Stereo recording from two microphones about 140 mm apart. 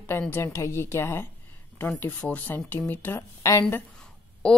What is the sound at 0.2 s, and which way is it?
Speech, 15° left (ahead or behind).